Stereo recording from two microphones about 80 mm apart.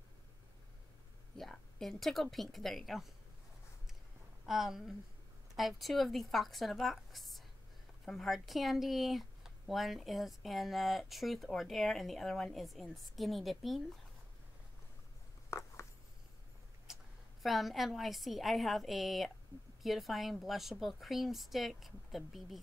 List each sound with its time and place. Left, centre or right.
1.3 s a woman's voice: centre
4.5 s speech: centre
15.5 s a sound: left
16.8 s a woman's voice: centre